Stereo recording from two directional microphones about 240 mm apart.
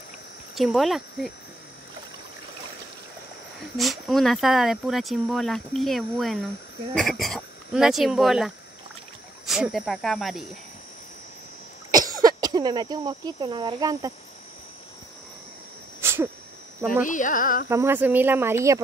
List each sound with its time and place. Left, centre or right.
0.6 s speech: centre
3.7 s speech: centre
11.9 s speech: centre
16.0 s a sound: centre
17.0 s carnatic music: left
17.6 s speech: centre